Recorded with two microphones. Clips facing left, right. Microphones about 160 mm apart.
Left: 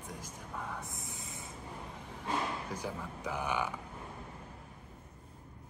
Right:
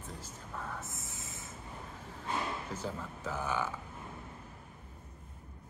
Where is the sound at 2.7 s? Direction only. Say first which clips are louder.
Even; 15° left (ahead or behind).